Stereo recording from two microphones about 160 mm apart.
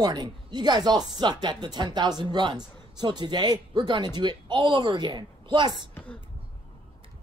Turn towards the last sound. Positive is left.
turn(degrees=-30)  # may be behind; listen again after turning